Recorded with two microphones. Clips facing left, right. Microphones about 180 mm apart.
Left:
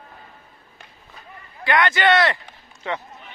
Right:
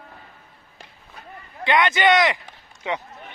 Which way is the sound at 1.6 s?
20° right (ahead or behind).